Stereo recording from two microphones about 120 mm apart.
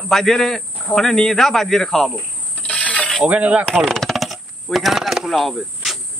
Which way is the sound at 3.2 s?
10° right (ahead or behind).